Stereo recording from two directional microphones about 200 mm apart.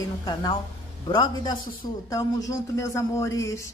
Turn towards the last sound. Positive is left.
turn(degrees=15)  # may be behind; listen again after turning